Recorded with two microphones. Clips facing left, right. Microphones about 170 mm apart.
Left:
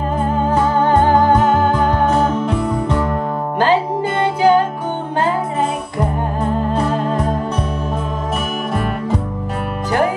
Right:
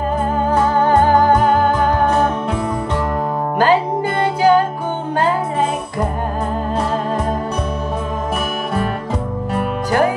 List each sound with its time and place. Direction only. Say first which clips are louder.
1.5 s music: even; 25° left (ahead or behind)
4.2 s music: even; 25° left (ahead or behind)